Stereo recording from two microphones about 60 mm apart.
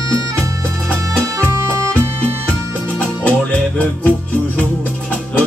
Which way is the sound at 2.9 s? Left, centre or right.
Left.